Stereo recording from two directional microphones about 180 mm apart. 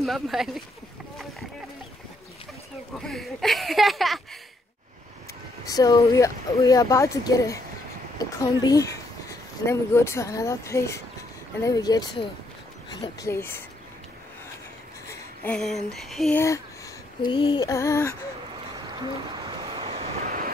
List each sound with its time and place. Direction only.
0.0 s speech: centre (ahead or behind)
3.0 s speech: centre (ahead or behind)
5.7 s speech: 20° left (ahead or behind)
13.2 s speech: 15° left (ahead or behind)
15.0 s speech: 10° left (ahead or behind)
16.3 s speech: 15° left (ahead or behind)
17.2 s speech: 30° left (ahead or behind)
18.9 s a sound: 20° right (ahead or behind)